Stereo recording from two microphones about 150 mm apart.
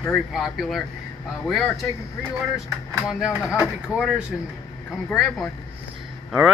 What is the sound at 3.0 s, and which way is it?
Speech, 5° right (ahead or behind).